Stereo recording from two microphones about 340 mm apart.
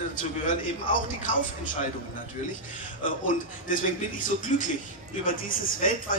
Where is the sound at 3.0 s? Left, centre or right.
Left.